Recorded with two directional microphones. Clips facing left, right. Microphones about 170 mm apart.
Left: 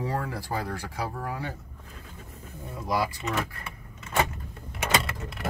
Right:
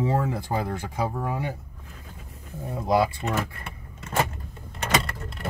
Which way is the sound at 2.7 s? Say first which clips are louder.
Right 6 dB; 25° right (ahead or behind).